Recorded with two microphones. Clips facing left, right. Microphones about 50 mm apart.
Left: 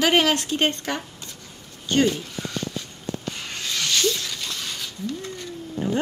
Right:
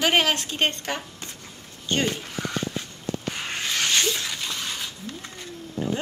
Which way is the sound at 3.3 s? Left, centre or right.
Right.